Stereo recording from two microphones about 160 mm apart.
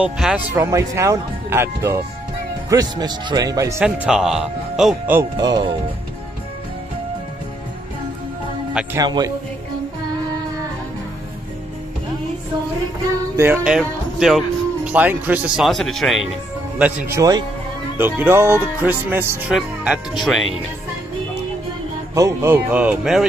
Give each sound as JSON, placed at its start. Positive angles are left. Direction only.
{"t": 0.0, "sound": "speech", "side_deg": -5}
{"t": 0.6, "sound": "a man's voice", "side_deg": -20}
{"t": 3.8, "sound": "speech", "side_deg": -5}
{"t": 5.4, "sound": "a man's voice", "side_deg": -25}
{"t": 8.9, "sound": "a man's voice", "side_deg": -25}
{"t": 13.4, "sound": "speech", "side_deg": -10}
{"t": 17.2, "sound": "a man's voice", "side_deg": -25}
{"t": 17.9, "sound": "speech", "side_deg": -15}
{"t": 22.1, "sound": "speech", "side_deg": -20}